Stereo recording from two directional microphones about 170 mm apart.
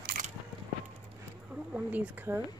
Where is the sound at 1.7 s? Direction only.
10° right (ahead or behind).